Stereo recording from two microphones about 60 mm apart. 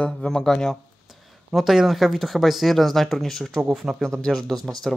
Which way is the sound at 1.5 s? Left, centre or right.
Centre.